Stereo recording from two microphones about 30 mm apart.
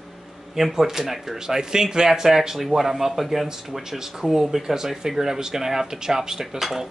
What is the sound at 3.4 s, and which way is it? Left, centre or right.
Speech, centre.